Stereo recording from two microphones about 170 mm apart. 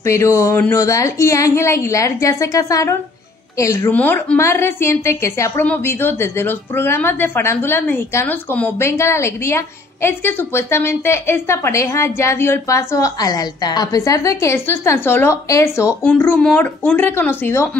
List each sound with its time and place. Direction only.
0.0 s a woman's voice: 15° left (ahead or behind)